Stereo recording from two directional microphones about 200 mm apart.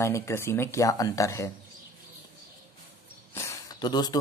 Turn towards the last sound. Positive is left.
turn(degrees=20)  # may be behind; listen again after turning